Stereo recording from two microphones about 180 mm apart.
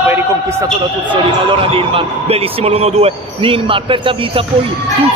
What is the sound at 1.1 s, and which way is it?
A man's voice, 30° right (ahead or behind).